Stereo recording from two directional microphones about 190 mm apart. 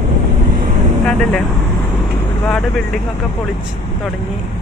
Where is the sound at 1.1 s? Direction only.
5° left (ahead or behind).